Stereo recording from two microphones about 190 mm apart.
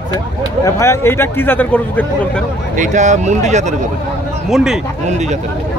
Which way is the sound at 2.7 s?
40° right (ahead or behind).